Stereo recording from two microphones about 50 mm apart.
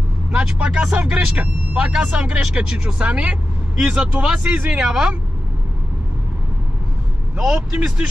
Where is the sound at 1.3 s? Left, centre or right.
Right.